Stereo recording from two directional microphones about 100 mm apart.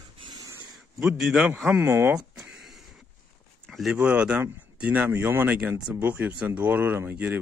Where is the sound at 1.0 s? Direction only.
5° right (ahead or behind).